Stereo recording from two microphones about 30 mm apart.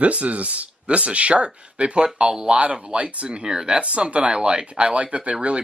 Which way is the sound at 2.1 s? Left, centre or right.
Right.